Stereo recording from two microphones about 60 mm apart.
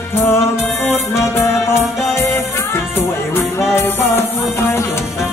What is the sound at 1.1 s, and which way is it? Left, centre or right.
Music, left.